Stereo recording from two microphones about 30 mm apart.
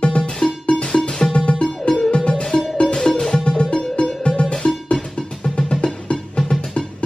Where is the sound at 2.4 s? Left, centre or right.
Centre.